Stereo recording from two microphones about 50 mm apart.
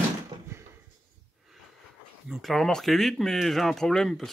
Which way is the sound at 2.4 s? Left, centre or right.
Centre.